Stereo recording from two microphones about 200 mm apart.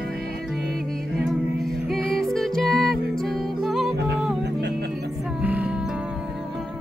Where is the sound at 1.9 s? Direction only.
Centre (ahead or behind).